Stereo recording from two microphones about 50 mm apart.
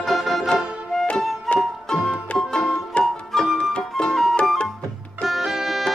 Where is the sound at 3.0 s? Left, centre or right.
Left.